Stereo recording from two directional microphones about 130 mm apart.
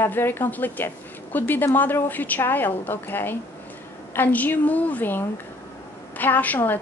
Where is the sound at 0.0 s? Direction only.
15° left (ahead or behind).